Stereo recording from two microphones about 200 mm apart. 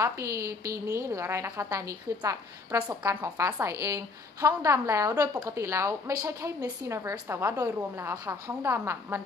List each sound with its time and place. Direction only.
0.0 s a woman's voice: 15° right (ahead or behind)